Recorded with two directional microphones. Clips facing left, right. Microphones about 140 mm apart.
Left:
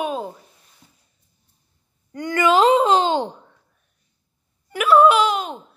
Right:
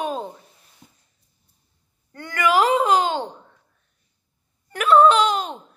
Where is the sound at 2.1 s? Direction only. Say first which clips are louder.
Left 3 dB; 20° left (ahead or behind).